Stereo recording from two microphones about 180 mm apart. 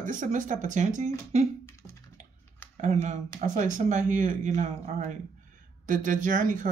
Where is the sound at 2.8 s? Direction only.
40° right (ahead or behind).